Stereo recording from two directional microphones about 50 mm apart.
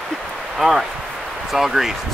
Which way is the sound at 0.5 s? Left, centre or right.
Centre.